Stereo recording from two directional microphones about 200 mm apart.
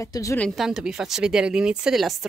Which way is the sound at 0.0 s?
15° left (ahead or behind).